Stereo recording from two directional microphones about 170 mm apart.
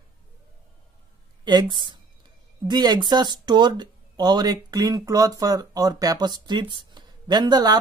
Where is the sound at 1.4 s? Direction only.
25° right (ahead or behind).